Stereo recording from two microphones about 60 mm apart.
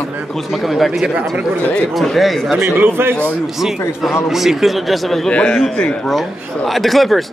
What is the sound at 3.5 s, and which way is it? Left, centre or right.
Speech, centre.